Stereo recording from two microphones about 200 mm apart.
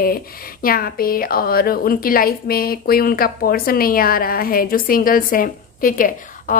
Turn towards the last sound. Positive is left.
turn(degrees=45)  # may be behind; listen again after turning